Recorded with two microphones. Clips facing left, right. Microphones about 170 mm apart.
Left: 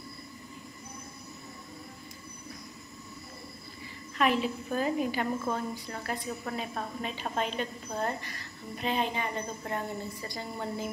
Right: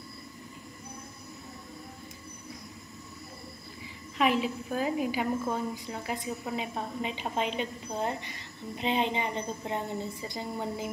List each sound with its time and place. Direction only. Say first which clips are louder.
4.2 s a woman's voice: right 1 dB; 10° right (ahead or behind)